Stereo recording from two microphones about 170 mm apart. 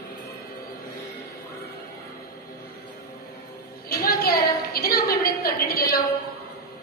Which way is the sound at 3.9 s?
65° left (ahead or behind).